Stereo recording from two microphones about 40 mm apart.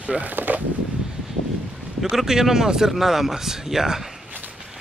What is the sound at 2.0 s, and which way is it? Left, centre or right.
Speech, centre.